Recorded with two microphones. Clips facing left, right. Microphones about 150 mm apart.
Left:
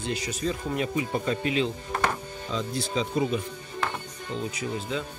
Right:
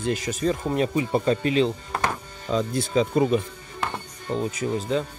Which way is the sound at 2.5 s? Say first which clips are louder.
Right 7 dB; 50° right (ahead or behind).